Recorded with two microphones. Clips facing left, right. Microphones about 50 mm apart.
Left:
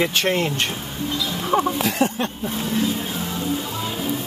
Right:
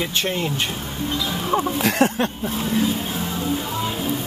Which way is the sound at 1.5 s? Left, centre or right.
Left.